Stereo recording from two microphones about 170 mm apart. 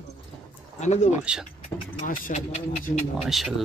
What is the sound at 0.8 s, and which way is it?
Speech, 40° left (ahead or behind).